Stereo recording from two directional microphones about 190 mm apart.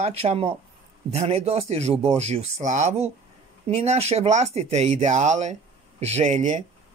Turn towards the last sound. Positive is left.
turn(degrees=-40)  # may be behind; listen again after turning